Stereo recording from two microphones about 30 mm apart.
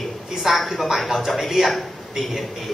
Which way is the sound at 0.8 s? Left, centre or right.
Centre.